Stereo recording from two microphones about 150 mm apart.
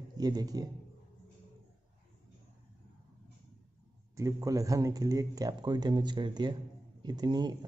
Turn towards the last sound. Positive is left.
turn(degrees=-25)  # may be behind; listen again after turning